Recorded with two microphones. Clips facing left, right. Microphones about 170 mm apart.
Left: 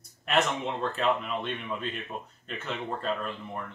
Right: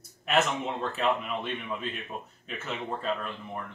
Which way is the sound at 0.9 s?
5° right (ahead or behind).